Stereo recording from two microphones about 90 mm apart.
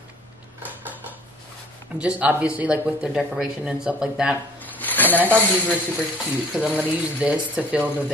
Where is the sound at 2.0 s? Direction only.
15° right (ahead or behind).